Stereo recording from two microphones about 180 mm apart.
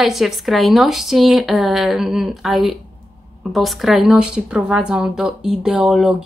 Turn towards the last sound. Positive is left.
turn(degrees=-5)  # may be behind; listen again after turning